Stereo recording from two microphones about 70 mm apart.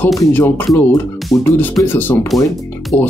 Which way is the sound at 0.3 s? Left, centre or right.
Left.